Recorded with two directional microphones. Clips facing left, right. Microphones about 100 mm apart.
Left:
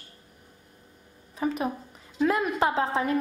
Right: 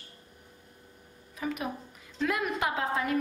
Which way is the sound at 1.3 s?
30° left (ahead or behind).